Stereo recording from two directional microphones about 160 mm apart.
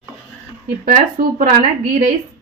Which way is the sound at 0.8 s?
65° right (ahead or behind).